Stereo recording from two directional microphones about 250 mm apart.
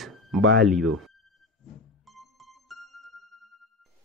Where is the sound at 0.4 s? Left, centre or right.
Right.